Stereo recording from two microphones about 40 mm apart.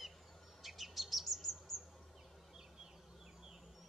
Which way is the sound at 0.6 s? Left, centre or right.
Centre.